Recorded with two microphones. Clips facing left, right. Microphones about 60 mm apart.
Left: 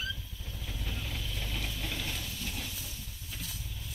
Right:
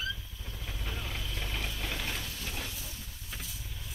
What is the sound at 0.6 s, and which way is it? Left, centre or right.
Vehicle, right.